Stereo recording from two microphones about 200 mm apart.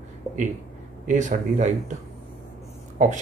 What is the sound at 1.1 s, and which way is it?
Speech, 40° right (ahead or behind).